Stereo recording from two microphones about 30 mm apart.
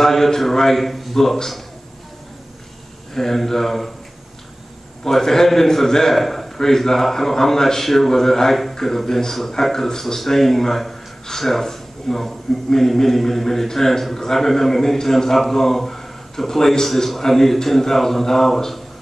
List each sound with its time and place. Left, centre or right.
0.0 s a man's voice: centre
3.2 s a man's voice: centre
5.0 s a man's voice: centre